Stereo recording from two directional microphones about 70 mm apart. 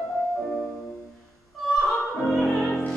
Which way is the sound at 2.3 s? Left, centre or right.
Centre.